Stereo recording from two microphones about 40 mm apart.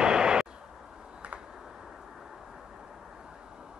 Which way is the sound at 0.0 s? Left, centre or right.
Right.